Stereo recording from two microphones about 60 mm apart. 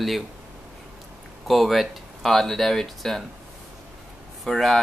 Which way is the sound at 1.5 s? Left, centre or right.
Centre.